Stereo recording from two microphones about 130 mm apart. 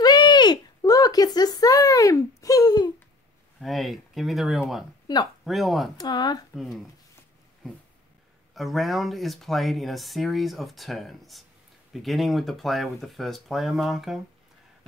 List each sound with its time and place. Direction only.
0.0 s a sound: 35° left (ahead or behind)
3.6 s speech: centre (ahead or behind)
5.0 s speech: 30° left (ahead or behind)
5.4 s speech: centre (ahead or behind)
5.9 s speech: 30° left (ahead or behind)
6.5 s speech: centre (ahead or behind)
8.5 s speech: centre (ahead or behind)